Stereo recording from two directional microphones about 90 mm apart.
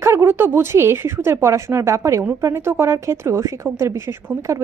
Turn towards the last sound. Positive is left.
turn(degrees=-30)  # may be behind; listen again after turning